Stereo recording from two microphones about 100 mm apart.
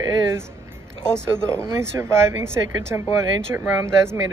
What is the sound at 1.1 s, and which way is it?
Speech, 25° right (ahead or behind).